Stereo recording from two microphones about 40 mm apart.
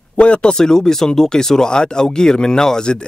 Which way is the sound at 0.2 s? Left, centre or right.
Left.